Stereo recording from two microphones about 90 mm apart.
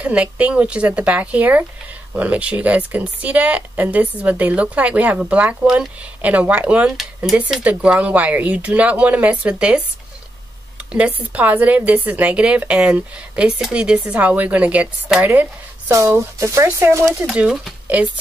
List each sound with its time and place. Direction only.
0.0 s a woman's voice: 15° right (ahead or behind)
10.9 s a woman's voice: 15° right (ahead or behind)
16.3 s speech: 35° right (ahead or behind)
17.4 s a woman's voice: 10° right (ahead or behind)